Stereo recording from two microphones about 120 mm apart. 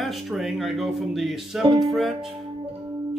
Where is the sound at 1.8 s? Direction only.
Centre (ahead or behind).